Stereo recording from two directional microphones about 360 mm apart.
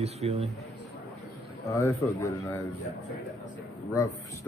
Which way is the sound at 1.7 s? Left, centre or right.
Centre.